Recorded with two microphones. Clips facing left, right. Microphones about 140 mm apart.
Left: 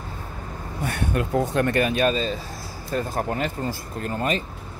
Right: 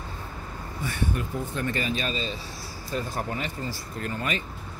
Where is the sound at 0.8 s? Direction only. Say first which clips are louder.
Left 4 dB; 75° left (ahead or behind); by 4.5 s 40° left (ahead or behind).